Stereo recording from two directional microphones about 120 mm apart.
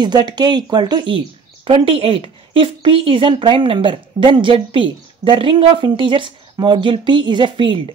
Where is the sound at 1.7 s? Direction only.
50° right (ahead or behind).